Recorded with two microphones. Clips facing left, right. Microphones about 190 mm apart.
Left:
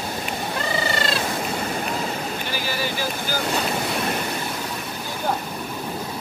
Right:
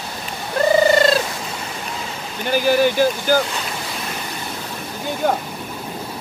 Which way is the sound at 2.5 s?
50° right (ahead or behind).